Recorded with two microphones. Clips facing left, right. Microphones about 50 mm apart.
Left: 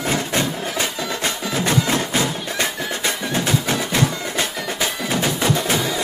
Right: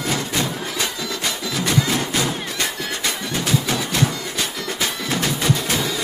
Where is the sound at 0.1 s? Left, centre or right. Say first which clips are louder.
Left 2 dB; left.